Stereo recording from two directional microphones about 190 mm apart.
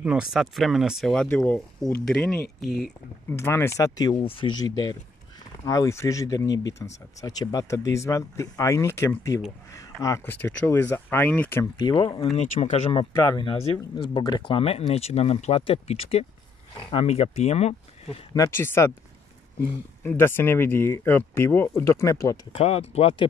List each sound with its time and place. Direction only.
0.0 s speech: 5° right (ahead or behind)
11.8 s speech: 25° left (ahead or behind)
12.4 s speech: 35° left (ahead or behind)
13.1 s speech: 15° left (ahead or behind); by 18.2 s 35° left (ahead or behind)
18.3 s speech: 15° left (ahead or behind)
22.5 s speech: 30° left (ahead or behind)